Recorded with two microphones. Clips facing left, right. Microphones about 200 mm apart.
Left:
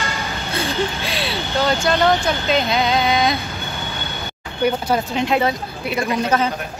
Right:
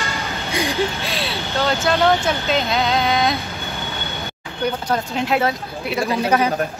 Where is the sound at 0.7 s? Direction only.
Centre (ahead or behind).